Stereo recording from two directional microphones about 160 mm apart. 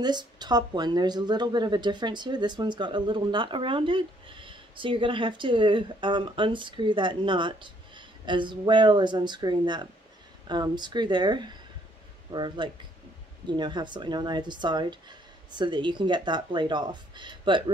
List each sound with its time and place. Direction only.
0.0 s speech: 25° right (ahead or behind)